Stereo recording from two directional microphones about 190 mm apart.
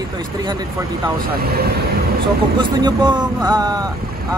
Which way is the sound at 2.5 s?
25° right (ahead or behind).